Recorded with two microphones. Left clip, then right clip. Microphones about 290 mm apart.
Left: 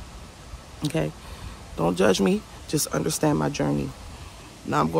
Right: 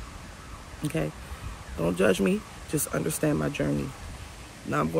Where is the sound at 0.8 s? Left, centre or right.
Centre.